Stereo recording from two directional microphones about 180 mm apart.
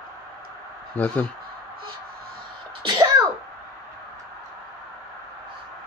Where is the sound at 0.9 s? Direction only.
5° left (ahead or behind).